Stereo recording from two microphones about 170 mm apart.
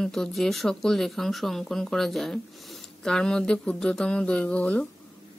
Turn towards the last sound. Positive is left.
turn(degrees=10)  # may be behind; listen again after turning